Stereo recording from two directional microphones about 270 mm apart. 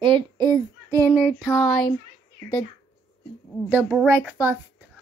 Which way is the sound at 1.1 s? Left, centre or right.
Centre.